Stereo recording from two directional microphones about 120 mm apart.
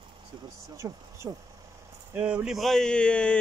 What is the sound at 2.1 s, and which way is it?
Speech, 10° right (ahead or behind).